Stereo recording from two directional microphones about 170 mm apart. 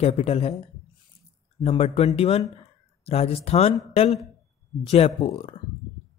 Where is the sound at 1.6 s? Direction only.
35° left (ahead or behind).